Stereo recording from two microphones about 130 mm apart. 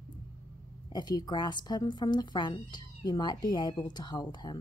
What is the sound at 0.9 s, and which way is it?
Speech, 30° left (ahead or behind).